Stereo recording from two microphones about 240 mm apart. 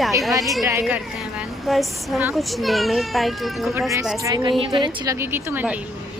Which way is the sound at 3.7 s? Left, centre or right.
Centre.